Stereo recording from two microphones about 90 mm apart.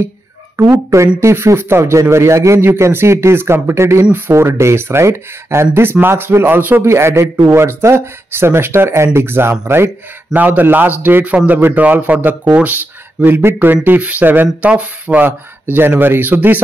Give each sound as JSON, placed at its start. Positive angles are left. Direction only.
{"t": 0.6, "sound": "a man's voice", "side_deg": -30}